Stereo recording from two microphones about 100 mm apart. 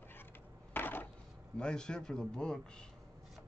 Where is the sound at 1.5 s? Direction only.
10° left (ahead or behind).